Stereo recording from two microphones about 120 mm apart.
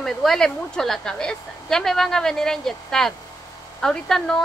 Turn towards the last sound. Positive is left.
turn(degrees=5)  # may be behind; listen again after turning